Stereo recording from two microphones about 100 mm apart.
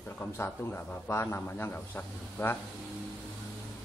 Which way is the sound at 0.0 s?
20° left (ahead or behind).